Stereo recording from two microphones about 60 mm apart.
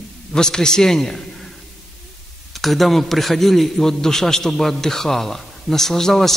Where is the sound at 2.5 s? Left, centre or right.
Centre.